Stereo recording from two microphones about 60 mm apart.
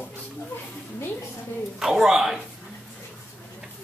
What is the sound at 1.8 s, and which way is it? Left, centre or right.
Speech, centre.